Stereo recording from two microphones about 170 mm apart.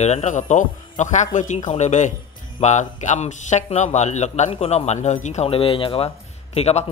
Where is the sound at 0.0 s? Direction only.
40° left (ahead or behind).